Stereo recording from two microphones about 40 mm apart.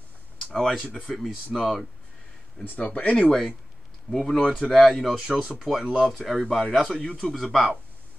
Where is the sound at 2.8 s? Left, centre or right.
Left.